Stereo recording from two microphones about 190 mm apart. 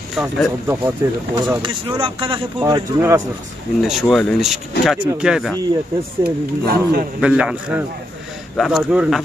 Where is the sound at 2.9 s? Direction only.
15° right (ahead or behind).